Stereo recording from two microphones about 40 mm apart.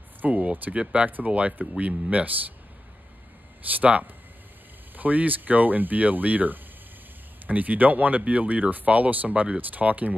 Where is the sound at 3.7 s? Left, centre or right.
Right.